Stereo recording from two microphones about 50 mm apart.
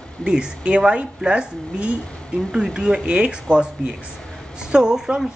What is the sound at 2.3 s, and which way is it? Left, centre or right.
A woman's voice, centre.